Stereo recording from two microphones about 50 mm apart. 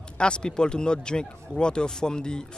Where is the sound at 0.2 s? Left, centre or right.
Centre.